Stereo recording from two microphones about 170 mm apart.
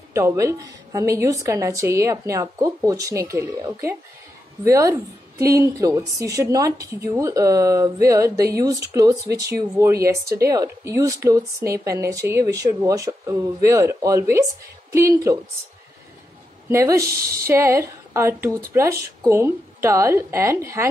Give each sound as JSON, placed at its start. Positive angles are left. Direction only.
{"t": 0.1, "sound": "a woman's voice", "side_deg": -15}
{"t": 16.6, "sound": "speech", "side_deg": -15}
{"t": 17.0, "sound": "a woman's voice", "side_deg": -60}
{"t": 17.5, "sound": "a woman's voice", "side_deg": -15}